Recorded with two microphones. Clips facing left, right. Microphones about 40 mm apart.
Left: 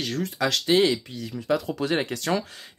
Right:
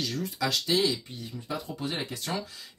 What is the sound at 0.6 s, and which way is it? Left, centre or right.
Speech, left.